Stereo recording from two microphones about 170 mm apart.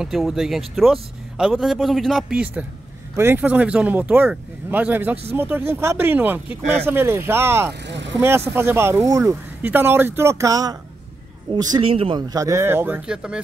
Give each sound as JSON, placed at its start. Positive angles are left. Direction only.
{"t": 0.0, "sound": "a man's voice", "side_deg": 0}
{"t": 7.8, "sound": "vehicle", "side_deg": -90}
{"t": 8.2, "sound": "speech", "side_deg": -15}
{"t": 11.8, "sound": "speech", "side_deg": -35}